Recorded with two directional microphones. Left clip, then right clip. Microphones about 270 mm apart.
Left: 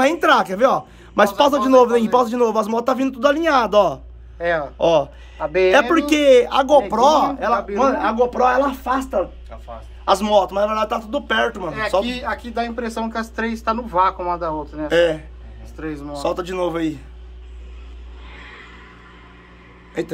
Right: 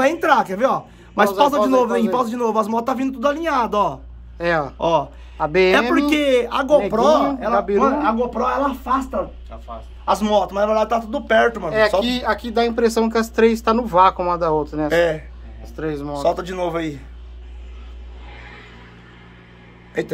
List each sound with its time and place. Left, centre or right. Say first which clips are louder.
0.0 s a man's voice: left 1 dB; centre
4.5 s speech: right 1 dB; right
4.7 s a man's voice: left 2 dB; centre
5.4 s speech: right 1 dB; right
5.9 s a man's voice: left 4 dB; centre
10.0 s a man's voice: left 2 dB; centre
12.0 s speech: right 3 dB; right
14.9 s a man's voice: left 2 dB; centre
15.7 s a man's voice: right 4 dB; right
16.2 s a man's voice: right 1 dB; centre
20.0 s a man's voice: right 1 dB; centre